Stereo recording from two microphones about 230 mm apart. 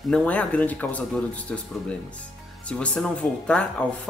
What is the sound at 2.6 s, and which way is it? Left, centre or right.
Speech, centre.